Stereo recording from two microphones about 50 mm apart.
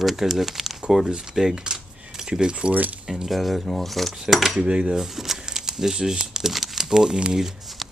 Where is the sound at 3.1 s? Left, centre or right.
Centre.